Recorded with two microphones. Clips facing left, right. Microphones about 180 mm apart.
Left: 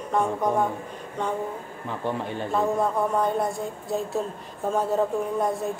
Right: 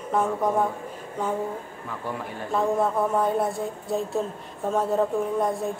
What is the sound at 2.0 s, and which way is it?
Speech, 25° left (ahead or behind).